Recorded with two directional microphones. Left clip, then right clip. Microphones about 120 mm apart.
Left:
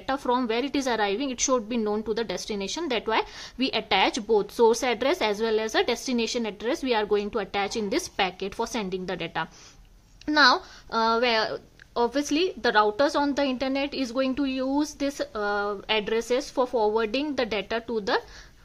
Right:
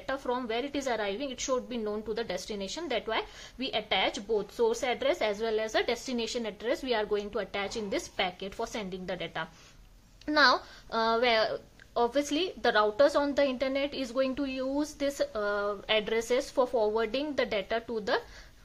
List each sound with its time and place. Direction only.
0.0 s a woman's voice: 40° left (ahead or behind)
10.2 s speech: 25° left (ahead or behind)